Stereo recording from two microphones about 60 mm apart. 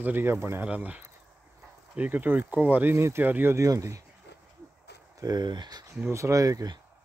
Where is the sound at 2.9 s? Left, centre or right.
Right.